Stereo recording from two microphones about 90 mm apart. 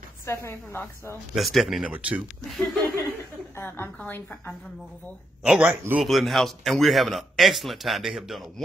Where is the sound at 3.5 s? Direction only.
25° left (ahead or behind).